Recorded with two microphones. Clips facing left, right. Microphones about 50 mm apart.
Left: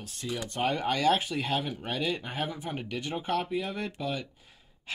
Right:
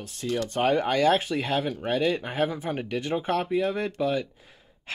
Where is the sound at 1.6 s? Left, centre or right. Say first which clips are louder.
Right 5 dB; centre.